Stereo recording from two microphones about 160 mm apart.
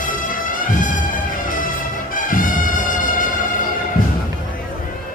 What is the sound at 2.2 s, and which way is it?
Music, 60° left (ahead or behind).